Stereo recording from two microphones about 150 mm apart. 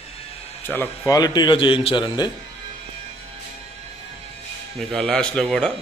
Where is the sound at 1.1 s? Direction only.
25° left (ahead or behind).